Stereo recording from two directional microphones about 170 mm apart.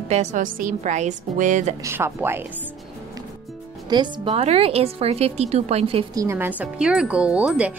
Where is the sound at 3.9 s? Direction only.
30° right (ahead or behind).